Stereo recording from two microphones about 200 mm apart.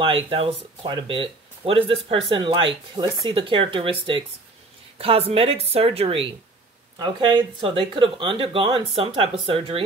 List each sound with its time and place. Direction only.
0.0 s speech: 25° right (ahead or behind)
4.9 s speech: 30° right (ahead or behind)